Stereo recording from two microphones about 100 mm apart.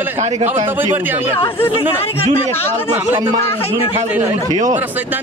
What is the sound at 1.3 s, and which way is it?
Speech, 60° left (ahead or behind).